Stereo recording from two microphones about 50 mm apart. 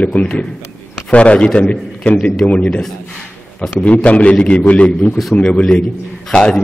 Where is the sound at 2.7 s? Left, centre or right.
Centre.